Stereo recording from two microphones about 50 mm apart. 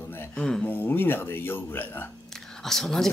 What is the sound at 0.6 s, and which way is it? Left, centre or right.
Speech, left.